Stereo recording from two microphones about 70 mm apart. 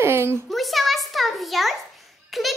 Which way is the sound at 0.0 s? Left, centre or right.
Right.